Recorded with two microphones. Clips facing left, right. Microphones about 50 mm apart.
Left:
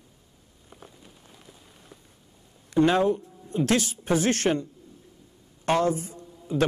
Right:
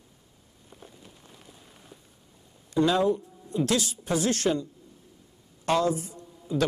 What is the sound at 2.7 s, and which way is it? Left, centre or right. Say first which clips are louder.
Speech: left 2 dB; left.